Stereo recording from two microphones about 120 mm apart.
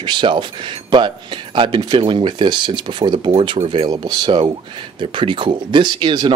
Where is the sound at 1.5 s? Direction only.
40° right (ahead or behind).